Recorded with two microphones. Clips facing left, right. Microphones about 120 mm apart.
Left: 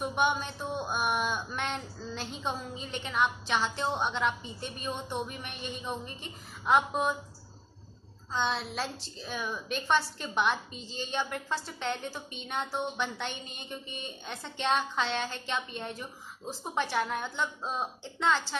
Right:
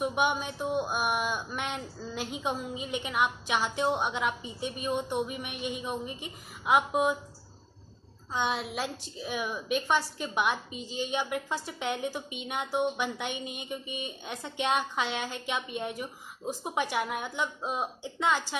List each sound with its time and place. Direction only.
0.0 s a woman's voice: 5° right (ahead or behind)
8.3 s a woman's voice: 10° right (ahead or behind)